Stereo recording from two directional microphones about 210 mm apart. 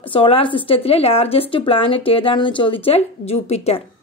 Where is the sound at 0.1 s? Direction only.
25° left (ahead or behind).